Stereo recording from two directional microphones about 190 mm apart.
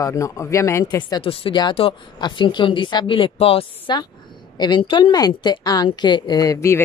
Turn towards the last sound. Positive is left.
turn(degrees=15)  # may be behind; listen again after turning